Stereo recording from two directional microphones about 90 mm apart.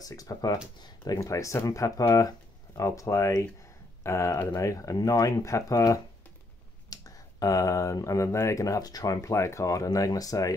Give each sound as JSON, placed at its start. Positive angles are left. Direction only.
{"t": 0.0, "sound": "speech", "side_deg": 40}